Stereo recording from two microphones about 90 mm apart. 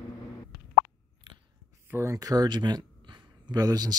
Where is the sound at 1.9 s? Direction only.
35° right (ahead or behind).